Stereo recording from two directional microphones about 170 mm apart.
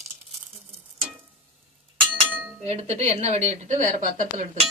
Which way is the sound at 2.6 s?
40° right (ahead or behind).